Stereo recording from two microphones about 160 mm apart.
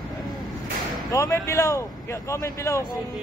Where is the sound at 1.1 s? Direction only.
20° left (ahead or behind).